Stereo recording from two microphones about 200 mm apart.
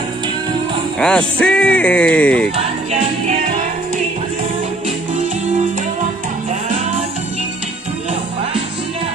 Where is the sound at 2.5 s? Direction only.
30° right (ahead or behind).